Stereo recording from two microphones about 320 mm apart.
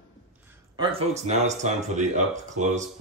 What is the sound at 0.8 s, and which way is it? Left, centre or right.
Speech, centre.